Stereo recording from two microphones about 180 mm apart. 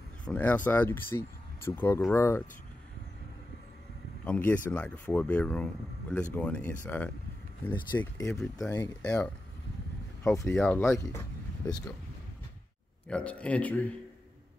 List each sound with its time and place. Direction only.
0.2 s speech: 10° left (ahead or behind)
4.3 s speech: 10° left (ahead or behind)
9.0 s speech: 5° left (ahead or behind)
13.1 s speech: 5° left (ahead or behind)